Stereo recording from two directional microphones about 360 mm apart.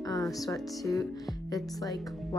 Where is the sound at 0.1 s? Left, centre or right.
Centre.